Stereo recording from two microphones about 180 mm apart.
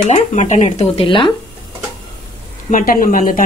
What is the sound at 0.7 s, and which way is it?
Speech, 30° left (ahead or behind).